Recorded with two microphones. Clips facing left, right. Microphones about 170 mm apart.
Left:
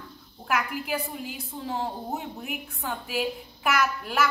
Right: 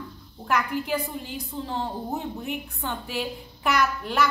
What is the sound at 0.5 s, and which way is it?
A woman's voice, 5° left (ahead or behind).